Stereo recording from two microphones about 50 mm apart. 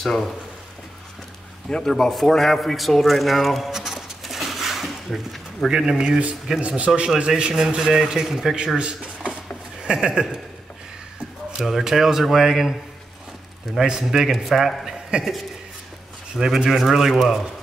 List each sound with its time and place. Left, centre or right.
1.8 s a man's voice: centre
5.7 s a man's voice: centre
8.7 s a man's voice: centre
11.5 s a man's voice: centre
13.7 s a man's voice: centre
14.9 s a sound: centre
16.3 s speech: centre